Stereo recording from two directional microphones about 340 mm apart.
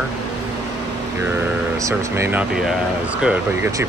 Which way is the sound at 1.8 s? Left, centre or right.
Centre.